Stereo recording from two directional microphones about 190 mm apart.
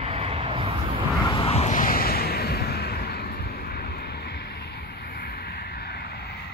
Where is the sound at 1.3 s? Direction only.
30° left (ahead or behind).